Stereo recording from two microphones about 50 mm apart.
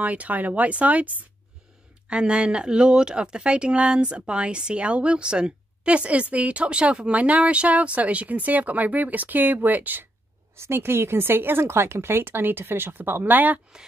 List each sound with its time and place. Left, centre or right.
0.0 s speech: right
10.6 s speech: right